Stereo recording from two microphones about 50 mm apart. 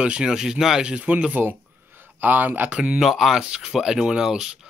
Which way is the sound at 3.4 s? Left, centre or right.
Centre.